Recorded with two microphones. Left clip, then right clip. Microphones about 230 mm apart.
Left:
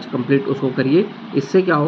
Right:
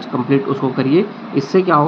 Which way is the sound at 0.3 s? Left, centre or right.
Centre.